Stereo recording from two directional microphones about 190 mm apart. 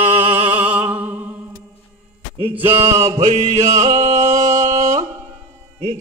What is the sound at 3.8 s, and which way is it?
Music, 35° right (ahead or behind).